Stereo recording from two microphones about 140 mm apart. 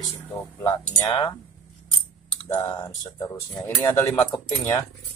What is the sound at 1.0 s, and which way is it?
Speech, 30° left (ahead or behind).